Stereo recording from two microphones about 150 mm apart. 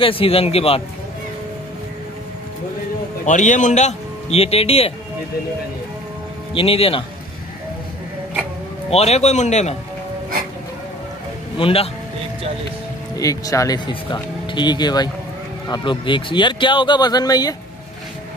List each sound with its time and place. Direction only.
0.0 s speech: 40° left (ahead or behind)
3.3 s a man's voice: 55° left (ahead or behind); by 4.9 s 40° left (ahead or behind)
6.5 s speech: 40° left (ahead or behind)
8.9 s a man's voice: 45° left (ahead or behind)
11.5 s speech: 40° left (ahead or behind)
13.1 s speech: 25° left (ahead or behind)